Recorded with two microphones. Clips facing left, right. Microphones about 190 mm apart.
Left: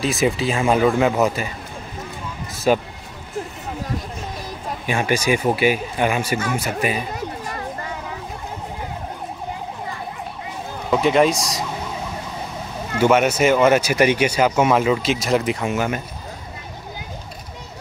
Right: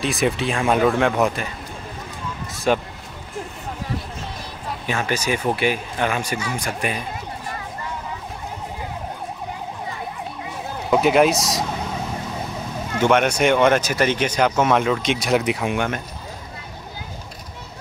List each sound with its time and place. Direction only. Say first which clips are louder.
0.0 s speech: left 2 dB; centre (ahead or behind)
2.5 s speech: left 2 dB; 5° left (ahead or behind)
4.8 s speech: left 4 dB; 15° left (ahead or behind)
6.3 s speech: left 4 dB; 50° left (ahead or behind)
6.6 s speech: left 3 dB; 5° left (ahead or behind)
10.9 s speech: even; 5° right (ahead or behind)
13.0 s speech: left 2 dB; 5° left (ahead or behind)